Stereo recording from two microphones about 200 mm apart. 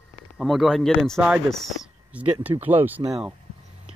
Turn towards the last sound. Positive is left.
turn(degrees=-5)  # may be behind; listen again after turning